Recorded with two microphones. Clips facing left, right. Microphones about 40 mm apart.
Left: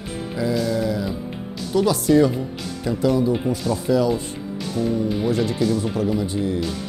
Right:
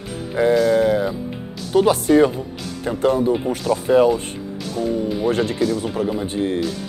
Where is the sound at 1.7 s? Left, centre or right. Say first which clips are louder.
Right 3 dB; right.